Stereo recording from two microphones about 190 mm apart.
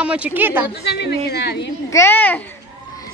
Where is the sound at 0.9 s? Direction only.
60° left (ahead or behind).